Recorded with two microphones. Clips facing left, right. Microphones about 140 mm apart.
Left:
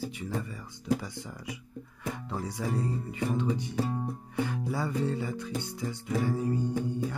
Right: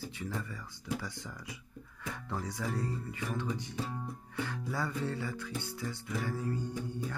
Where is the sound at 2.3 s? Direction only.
10° left (ahead or behind).